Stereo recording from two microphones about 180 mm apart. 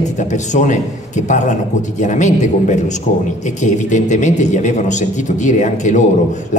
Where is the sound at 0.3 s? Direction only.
40° left (ahead or behind).